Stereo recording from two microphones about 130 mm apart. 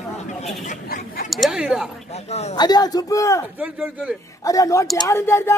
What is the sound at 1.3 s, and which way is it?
Speech, 5° right (ahead or behind).